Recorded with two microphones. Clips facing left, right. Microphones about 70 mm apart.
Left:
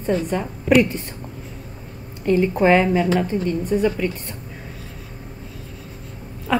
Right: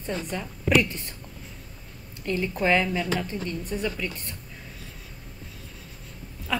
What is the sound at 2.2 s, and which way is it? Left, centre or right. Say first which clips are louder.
Speech: left 9 dB; left.